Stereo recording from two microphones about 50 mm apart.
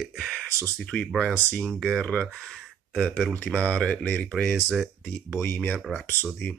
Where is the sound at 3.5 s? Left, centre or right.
Left.